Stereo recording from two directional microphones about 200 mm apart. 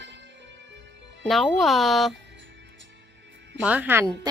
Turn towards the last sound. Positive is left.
turn(degrees=-10)  # may be behind; listen again after turning